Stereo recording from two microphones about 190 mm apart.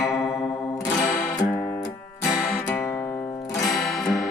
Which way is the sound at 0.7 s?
15° left (ahead or behind).